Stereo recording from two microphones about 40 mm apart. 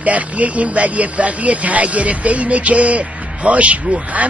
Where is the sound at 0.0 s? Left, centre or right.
Right.